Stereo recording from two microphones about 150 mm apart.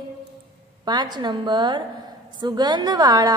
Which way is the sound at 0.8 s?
30° right (ahead or behind).